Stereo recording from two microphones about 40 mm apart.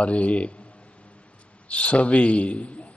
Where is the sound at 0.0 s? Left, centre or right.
Left.